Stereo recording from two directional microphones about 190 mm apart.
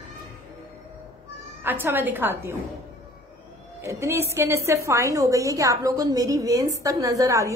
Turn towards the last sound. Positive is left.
turn(degrees=-15)  # may be behind; listen again after turning